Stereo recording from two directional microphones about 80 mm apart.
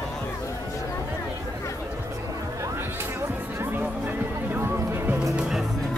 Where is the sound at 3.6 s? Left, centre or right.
Right.